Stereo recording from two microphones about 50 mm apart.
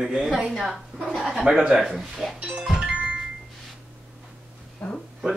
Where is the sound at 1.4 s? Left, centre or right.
Centre.